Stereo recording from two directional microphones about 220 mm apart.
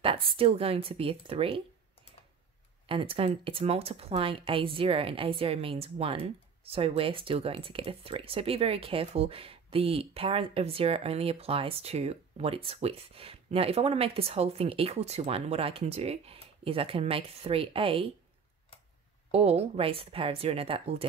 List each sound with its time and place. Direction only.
0.0 s speech: 25° right (ahead or behind)
2.9 s speech: 25° right (ahead or behind)
19.3 s speech: 30° right (ahead or behind)